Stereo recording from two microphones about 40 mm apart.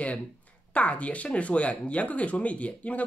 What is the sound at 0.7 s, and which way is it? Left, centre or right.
Speech, left.